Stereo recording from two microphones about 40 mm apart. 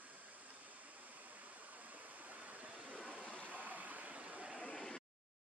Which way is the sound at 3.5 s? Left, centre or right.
Right.